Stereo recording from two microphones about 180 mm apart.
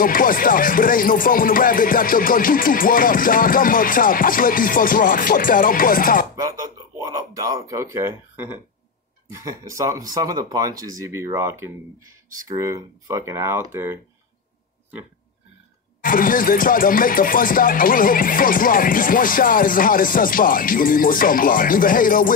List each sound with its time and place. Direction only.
0.0 s speech: 50° left (ahead or behind)
7.1 s speech: 20° right (ahead or behind)
16.0 s speech: 50° left (ahead or behind)